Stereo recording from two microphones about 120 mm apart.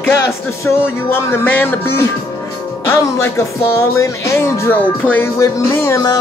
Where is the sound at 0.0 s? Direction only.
20° left (ahead or behind).